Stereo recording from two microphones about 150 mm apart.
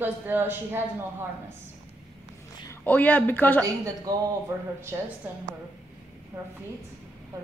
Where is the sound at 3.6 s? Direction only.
20° right (ahead or behind).